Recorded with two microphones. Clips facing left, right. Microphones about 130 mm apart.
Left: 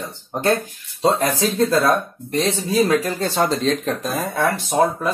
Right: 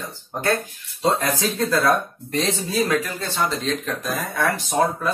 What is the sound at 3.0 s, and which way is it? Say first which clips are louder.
A man's voice: left 5 dB; 35° left (ahead or behind).